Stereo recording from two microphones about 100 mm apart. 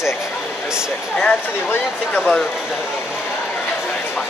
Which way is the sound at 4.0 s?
20° left (ahead or behind).